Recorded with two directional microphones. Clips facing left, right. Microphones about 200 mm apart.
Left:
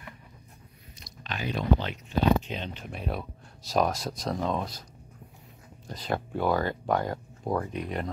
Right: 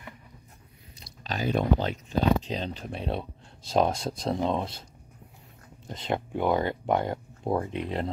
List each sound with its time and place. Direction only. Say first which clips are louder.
1.0 s chewing: right 4 dB; 40° right (ahead or behind)
2.4 s speech: right 4 dB; 35° right (ahead or behind)
5.9 s speech: right 1 dB; 20° right (ahead or behind)